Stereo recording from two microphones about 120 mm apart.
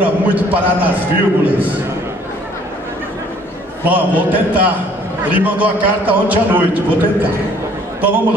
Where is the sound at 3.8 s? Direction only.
15° right (ahead or behind).